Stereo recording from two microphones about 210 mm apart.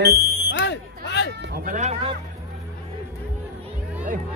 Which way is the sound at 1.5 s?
35° right (ahead or behind).